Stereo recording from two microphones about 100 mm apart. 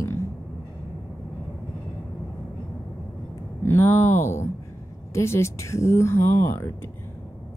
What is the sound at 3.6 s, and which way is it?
Speech, 25° left (ahead or behind).